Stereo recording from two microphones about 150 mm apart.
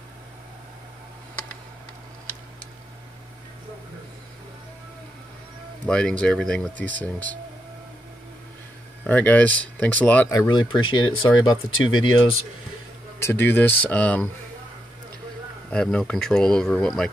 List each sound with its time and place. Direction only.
5.9 s speech: 5° left (ahead or behind)
9.0 s speech: 10° left (ahead or behind)
10.3 s speech: 25° left (ahead or behind)
13.2 s speech: 15° left (ahead or behind)
15.7 s speech: 5° left (ahead or behind)